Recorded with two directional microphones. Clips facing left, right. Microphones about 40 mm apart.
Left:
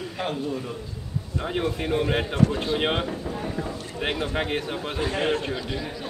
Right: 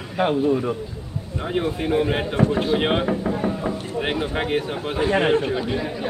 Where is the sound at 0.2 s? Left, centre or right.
Right.